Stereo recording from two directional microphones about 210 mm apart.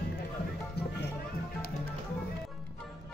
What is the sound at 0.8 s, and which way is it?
Music, 50° left (ahead or behind).